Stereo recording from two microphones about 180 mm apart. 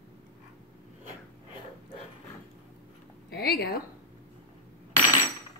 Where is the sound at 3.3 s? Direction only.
60° left (ahead or behind).